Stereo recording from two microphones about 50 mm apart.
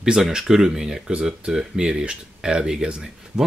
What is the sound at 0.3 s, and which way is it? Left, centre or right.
Speech, centre.